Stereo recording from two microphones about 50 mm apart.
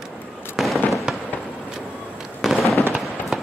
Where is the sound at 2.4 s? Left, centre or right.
Centre.